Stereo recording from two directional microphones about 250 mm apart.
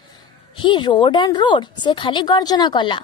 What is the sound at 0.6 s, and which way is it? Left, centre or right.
A woman's voice, centre.